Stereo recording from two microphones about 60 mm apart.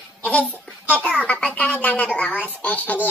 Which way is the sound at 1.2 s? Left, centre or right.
Left.